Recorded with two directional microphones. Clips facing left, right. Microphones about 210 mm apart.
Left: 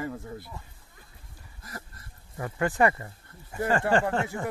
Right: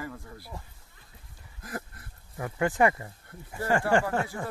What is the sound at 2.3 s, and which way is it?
Speech, 10° right (ahead or behind).